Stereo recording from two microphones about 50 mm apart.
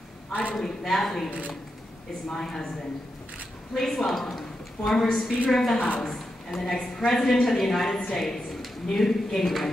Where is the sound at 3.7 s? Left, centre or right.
Centre.